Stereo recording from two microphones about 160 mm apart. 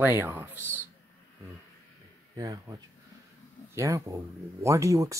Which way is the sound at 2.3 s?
25° right (ahead or behind).